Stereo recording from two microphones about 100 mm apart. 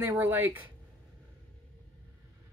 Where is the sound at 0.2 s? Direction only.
20° right (ahead or behind).